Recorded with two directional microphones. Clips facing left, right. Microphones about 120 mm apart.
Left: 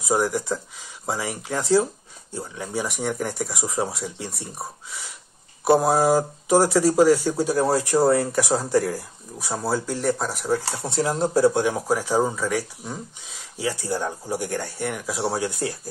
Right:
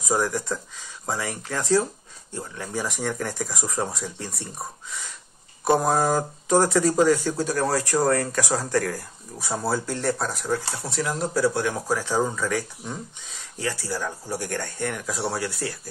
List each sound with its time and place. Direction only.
0.1 s speech: 15° left (ahead or behind)
5.7 s speech: 5° left (ahead or behind)
9.4 s speech: centre (ahead or behind)
10.8 s speech: 25° left (ahead or behind)
11.6 s speech: 15° left (ahead or behind)
15.2 s speech: 20° left (ahead or behind)